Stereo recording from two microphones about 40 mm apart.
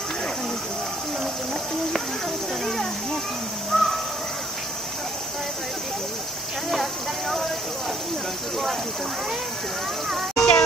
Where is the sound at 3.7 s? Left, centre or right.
Centre.